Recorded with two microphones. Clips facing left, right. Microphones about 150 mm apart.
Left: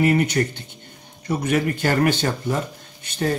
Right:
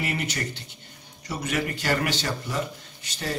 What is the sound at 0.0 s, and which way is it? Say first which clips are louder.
Speech: left 11 dB; 50° left (ahead or behind).